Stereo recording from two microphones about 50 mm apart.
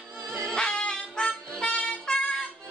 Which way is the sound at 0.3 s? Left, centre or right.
Centre.